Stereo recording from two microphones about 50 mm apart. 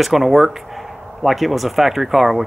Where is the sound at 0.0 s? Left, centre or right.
Centre.